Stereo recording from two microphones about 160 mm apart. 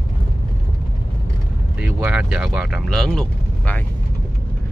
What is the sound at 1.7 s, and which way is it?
Vehicle, 10° right (ahead or behind).